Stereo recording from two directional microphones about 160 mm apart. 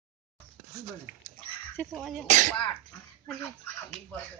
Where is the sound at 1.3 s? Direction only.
10° left (ahead or behind).